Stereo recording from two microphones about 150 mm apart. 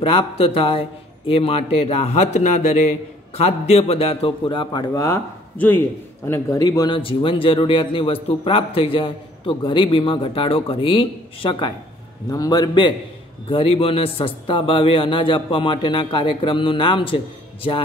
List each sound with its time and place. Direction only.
0.0 s a man's voice: 40° left (ahead or behind)
4.9 s a man's voice: 20° left (ahead or behind); by 11.7 s 35° left (ahead or behind)
12.3 s a man's voice: 25° left (ahead or behind)